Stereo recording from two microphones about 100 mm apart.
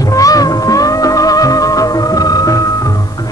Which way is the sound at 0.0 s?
35° left (ahead or behind).